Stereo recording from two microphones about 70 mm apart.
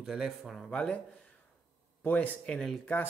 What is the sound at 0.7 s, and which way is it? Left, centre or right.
Speech, centre.